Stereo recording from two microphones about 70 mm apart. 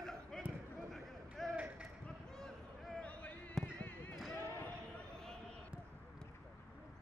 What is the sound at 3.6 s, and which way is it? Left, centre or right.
Basketball bounce, centre.